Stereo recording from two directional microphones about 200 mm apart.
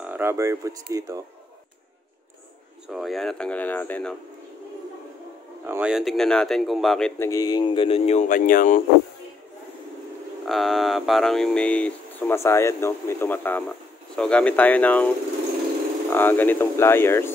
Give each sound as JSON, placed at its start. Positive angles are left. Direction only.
{"t": 0.0, "sound": "speech", "side_deg": -10}
{"t": 2.9, "sound": "speech", "side_deg": 0}
{"t": 5.7, "sound": "speech", "side_deg": -5}
{"t": 7.2, "sound": "speech", "side_deg": 20}
{"t": 10.4, "sound": "speech", "side_deg": 0}
{"t": 16.1, "sound": "speech", "side_deg": 10}